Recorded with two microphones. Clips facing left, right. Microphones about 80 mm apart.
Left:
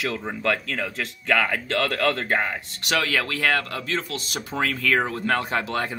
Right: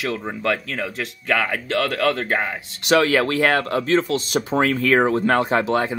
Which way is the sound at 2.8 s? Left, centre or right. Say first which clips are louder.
Right 8 dB; right.